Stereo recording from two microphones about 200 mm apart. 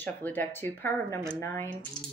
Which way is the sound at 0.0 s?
10° left (ahead or behind).